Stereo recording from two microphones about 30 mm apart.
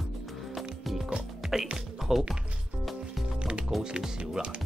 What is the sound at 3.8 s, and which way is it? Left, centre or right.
Speech, right.